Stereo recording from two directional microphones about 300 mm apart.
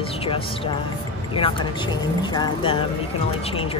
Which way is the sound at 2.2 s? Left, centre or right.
Centre.